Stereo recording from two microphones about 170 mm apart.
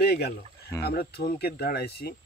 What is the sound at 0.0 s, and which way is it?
Speech, 70° left (ahead or behind).